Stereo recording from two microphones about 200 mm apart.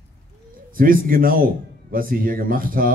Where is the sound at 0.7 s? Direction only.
45° right (ahead or behind).